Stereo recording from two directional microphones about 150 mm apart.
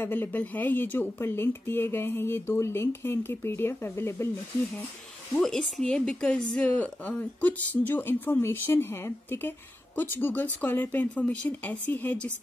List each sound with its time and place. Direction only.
0.0 s a woman's voice: 15° left (ahead or behind)
5.3 s a woman's voice: 5° left (ahead or behind)